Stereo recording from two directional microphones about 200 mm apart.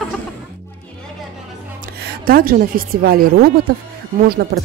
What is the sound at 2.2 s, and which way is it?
Speech, 45° right (ahead or behind).